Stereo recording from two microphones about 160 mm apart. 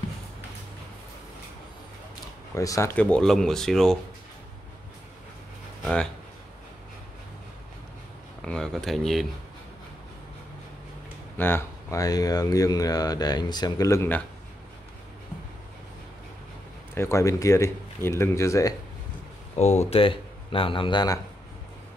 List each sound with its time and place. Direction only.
2.5 s speech: 20° left (ahead or behind); by 4.0 s 5° left (ahead or behind)
5.8 s a sound: 5° left (ahead or behind)
8.5 s a sound: 5° left (ahead or behind)
11.3 s speech: 15° left (ahead or behind)
16.9 s speech: 15° left (ahead or behind)
19.5 s speech: 45° left (ahead or behind); by 21.2 s 25° left (ahead or behind)